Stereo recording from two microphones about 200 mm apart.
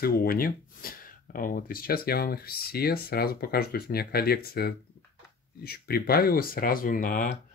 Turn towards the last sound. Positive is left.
turn(degrees=40)  # may be behind; listen again after turning